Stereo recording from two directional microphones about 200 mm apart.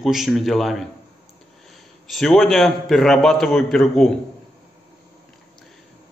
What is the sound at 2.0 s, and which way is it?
A man's voice, centre (ahead or behind).